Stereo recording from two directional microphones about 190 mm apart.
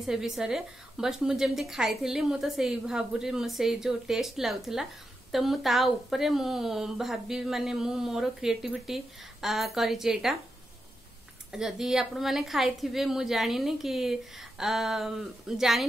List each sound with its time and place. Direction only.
0.0 s a woman's voice: centre (ahead or behind)
11.5 s a woman's voice: 5° right (ahead or behind)